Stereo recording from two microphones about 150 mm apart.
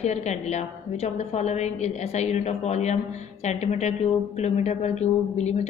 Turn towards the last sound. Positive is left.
turn(degrees=50)  # may be behind; listen again after turning